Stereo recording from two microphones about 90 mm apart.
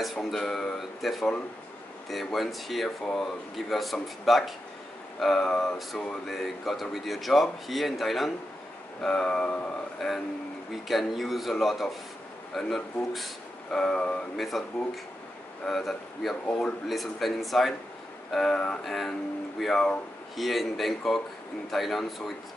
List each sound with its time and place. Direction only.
0.0 s speech: centre (ahead or behind)
9.0 s a sound: 10° left (ahead or behind)
10.7 s speech: centre (ahead or behind)
15.6 s speech: 5° left (ahead or behind)
16.4 s a sound: 10° left (ahead or behind)
16.8 s speech: centre (ahead or behind)